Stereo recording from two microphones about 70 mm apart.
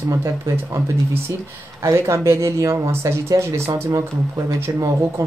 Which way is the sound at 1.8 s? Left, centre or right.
Right.